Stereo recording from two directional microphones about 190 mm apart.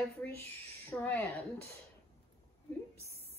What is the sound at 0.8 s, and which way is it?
Speech, 10° left (ahead or behind).